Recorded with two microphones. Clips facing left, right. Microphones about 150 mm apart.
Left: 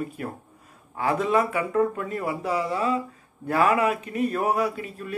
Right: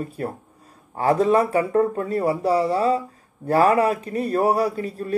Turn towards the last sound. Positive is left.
turn(degrees=-35)  # may be behind; listen again after turning